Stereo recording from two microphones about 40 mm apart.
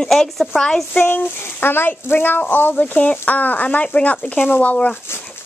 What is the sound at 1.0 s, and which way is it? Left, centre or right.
Speech, left.